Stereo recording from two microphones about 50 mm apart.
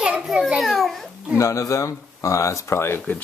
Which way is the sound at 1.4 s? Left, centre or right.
Left.